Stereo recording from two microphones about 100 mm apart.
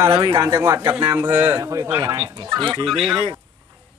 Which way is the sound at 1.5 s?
35° right (ahead or behind).